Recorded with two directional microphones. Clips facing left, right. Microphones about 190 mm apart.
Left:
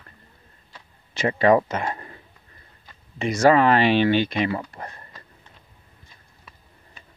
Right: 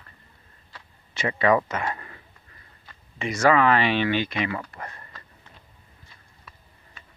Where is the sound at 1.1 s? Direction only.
40° left (ahead or behind).